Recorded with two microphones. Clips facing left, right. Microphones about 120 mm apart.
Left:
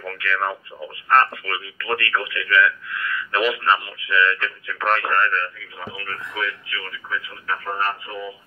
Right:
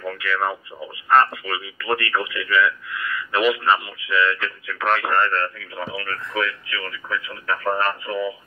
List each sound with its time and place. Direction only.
0.0 s speech: 10° right (ahead or behind)
5.0 s speech: 20° right (ahead or behind)
5.8 s speech: 90° right